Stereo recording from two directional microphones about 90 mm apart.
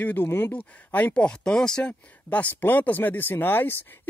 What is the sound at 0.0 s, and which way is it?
Speech, 20° left (ahead or behind).